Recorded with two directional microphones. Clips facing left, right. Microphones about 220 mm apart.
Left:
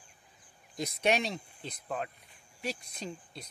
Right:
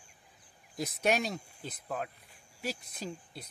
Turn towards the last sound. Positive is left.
turn(degrees=-5)  # may be behind; listen again after turning